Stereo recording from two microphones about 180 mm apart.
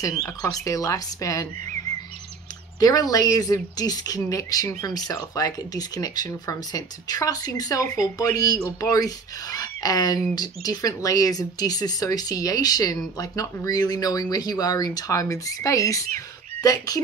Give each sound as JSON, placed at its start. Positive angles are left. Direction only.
{"t": 0.5, "sound": "speech", "side_deg": 20}
{"t": 2.8, "sound": "speech", "side_deg": 20}